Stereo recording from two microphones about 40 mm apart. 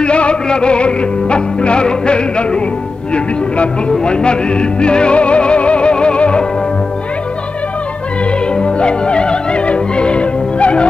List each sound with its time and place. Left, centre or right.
0.0 s music: left
4.0 s music: left
8.5 s music: left